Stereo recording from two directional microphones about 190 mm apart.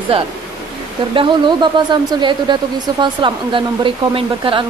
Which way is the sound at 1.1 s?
25° right (ahead or behind).